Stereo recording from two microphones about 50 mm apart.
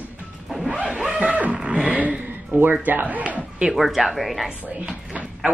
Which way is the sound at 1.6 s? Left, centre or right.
Right.